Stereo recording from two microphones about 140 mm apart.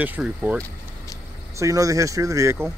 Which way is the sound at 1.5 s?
25° right (ahead or behind).